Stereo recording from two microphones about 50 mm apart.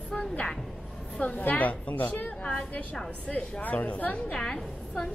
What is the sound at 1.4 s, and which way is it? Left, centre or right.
A woman's voice, left.